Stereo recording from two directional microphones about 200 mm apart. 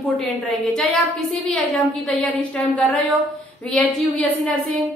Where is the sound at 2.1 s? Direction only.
5° left (ahead or behind).